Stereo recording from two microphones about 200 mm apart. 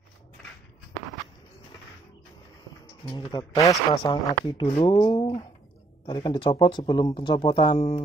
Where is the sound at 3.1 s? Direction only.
20° left (ahead or behind).